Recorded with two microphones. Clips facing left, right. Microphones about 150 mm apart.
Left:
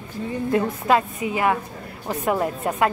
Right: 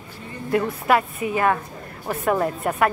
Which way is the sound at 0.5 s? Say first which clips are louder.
Right 1 dB; 20° left (ahead or behind).